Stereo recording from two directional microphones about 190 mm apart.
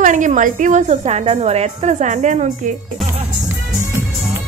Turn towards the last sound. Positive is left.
turn(degrees=-40)  # may be behind; listen again after turning